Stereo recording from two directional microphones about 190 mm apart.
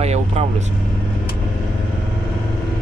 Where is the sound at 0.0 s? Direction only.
35° right (ahead or behind).